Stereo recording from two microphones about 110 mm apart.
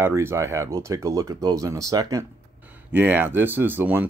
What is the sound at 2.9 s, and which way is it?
Speech, 20° right (ahead or behind).